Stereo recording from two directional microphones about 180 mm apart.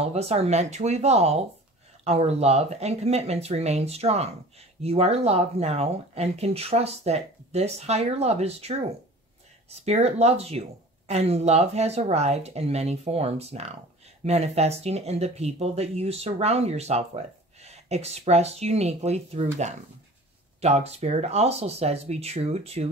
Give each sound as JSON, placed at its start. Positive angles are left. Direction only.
{"t": 0.0, "sound": "speech", "side_deg": -35}
{"t": 9.8, "sound": "speech", "side_deg": -35}